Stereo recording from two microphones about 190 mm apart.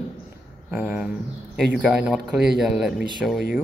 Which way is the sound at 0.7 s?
5° right (ahead or behind).